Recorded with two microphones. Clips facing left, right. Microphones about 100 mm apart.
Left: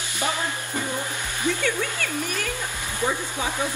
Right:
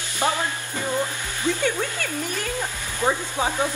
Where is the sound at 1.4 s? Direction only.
20° right (ahead or behind).